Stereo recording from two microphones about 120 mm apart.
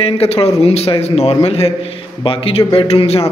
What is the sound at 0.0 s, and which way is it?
A man's voice, 55° left (ahead or behind).